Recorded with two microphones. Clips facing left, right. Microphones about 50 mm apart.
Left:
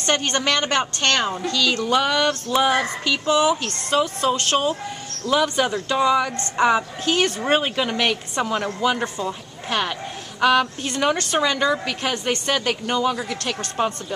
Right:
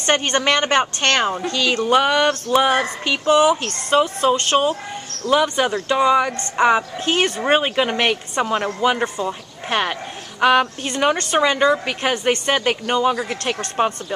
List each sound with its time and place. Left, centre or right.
0.0 s a woman's voice: right
7.1 s a woman's voice: right
9.7 s a woman's voice: right